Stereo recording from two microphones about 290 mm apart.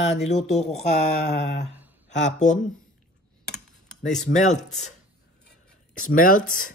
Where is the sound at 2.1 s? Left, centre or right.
Left.